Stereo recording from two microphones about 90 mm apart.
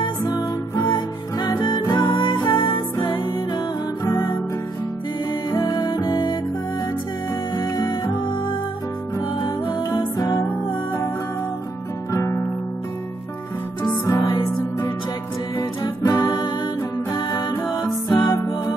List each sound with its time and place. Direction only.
0.0 s music: 55° left (ahead or behind)
4.0 s music: 35° left (ahead or behind)
5.5 s music: 50° left (ahead or behind)
7.5 s music: 45° left (ahead or behind)
9.4 s music: 50° left (ahead or behind)
12.1 s music: 30° left (ahead or behind)
13.8 s music: 45° left (ahead or behind)
15.5 s music: 45° left (ahead or behind)